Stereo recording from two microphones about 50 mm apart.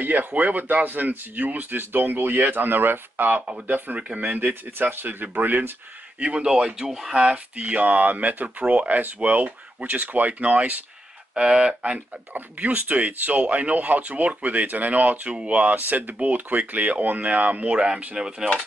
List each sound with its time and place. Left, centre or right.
0.0 s speech: right
6.1 s speech: centre
7.2 s speech: right
11.3 s speech: centre
12.4 s speech: right
15.7 s speech: right; by 18.5 s centre